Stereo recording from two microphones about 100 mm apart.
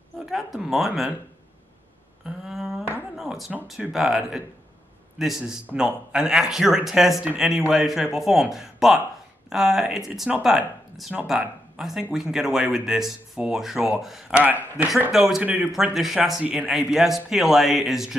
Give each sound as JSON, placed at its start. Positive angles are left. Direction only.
{"t": 0.2, "sound": "speech", "side_deg": -5}
{"t": 2.2, "sound": "a sound", "side_deg": -5}
{"t": 3.9, "sound": "speech", "side_deg": -5}
{"t": 5.7, "sound": "a man's voice", "side_deg": -15}
{"t": 6.1, "sound": "speech", "side_deg": -5}
{"t": 14.3, "sound": "a man's voice", "side_deg": -15}
{"t": 15.0, "sound": "speech", "side_deg": -5}
{"t": 15.4, "sound": "a man's voice", "side_deg": -15}
{"t": 15.7, "sound": "speech", "side_deg": -5}